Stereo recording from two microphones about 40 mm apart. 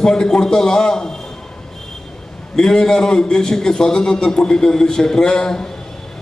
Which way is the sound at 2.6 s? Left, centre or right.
Centre.